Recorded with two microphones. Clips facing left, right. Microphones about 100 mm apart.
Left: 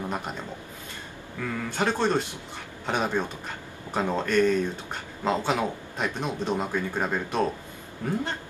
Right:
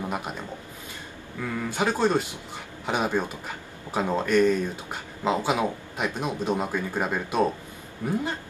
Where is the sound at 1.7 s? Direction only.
10° right (ahead or behind).